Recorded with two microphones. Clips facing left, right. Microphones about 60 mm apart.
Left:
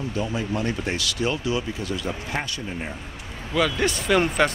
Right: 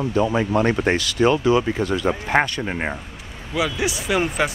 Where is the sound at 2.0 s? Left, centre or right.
Right.